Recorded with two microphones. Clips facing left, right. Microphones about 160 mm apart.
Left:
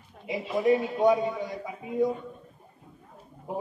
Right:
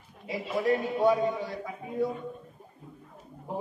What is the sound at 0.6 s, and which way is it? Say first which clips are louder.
Speech: left 3 dB; 20° left (ahead or behind).